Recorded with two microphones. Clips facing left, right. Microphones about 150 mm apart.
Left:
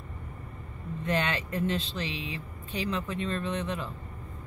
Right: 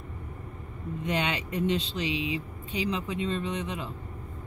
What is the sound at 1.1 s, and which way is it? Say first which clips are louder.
Speech: left 1 dB; 15° right (ahead or behind).